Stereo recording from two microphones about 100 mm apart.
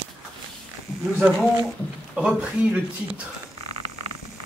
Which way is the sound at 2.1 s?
5° right (ahead or behind).